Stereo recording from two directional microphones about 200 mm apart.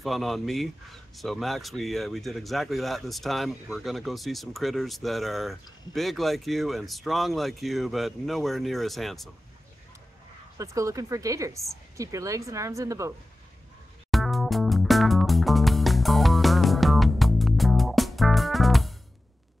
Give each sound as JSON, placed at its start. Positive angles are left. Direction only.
{"t": 0.0, "sound": "speech", "side_deg": 0}
{"t": 10.6, "sound": "speech", "side_deg": -15}
{"t": 14.1, "sound": "music", "side_deg": 0}